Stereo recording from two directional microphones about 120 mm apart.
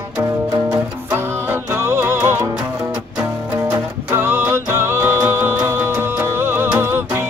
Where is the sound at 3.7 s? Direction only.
20° right (ahead or behind).